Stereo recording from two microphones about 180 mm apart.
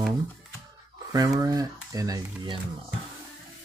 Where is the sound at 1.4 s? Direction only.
20° right (ahead or behind).